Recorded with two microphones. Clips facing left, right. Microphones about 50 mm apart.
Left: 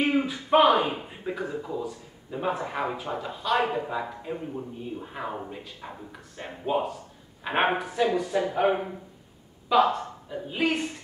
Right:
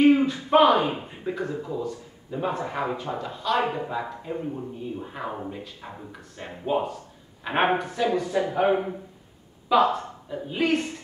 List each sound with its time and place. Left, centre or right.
0.0 s speech: centre